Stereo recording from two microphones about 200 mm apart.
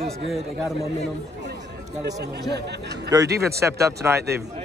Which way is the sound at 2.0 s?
55° right (ahead or behind).